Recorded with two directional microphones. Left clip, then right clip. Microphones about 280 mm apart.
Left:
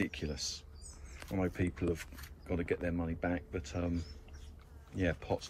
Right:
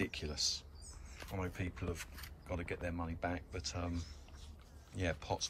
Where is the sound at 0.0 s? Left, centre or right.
Centre.